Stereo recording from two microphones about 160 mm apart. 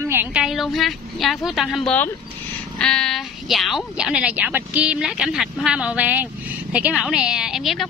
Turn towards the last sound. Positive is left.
turn(degrees=0)  # may be behind; listen again after turning